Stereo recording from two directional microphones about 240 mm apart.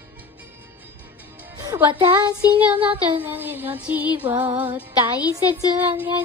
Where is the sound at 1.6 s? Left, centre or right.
Centre.